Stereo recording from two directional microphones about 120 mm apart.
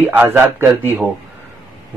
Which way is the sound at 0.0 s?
15° right (ahead or behind).